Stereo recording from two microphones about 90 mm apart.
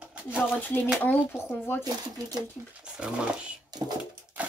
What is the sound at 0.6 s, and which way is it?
Speech, 20° left (ahead or behind).